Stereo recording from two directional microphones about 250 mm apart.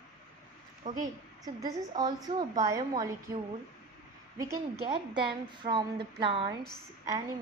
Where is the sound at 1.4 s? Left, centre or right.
Centre.